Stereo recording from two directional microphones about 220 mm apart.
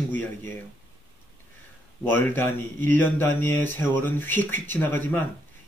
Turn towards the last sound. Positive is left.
turn(degrees=10)  # may be behind; listen again after turning